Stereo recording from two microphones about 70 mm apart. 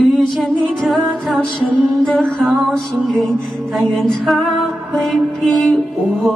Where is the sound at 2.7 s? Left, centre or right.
Centre.